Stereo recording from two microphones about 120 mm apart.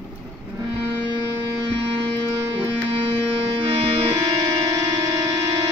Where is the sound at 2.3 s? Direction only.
20° right (ahead or behind).